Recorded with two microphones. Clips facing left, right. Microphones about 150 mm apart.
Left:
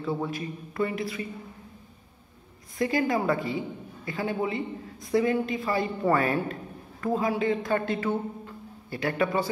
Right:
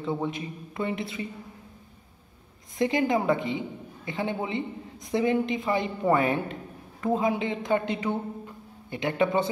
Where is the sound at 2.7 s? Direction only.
20° right (ahead or behind).